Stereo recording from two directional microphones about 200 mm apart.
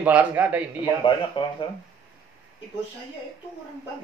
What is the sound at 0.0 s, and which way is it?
Speech, 10° right (ahead or behind).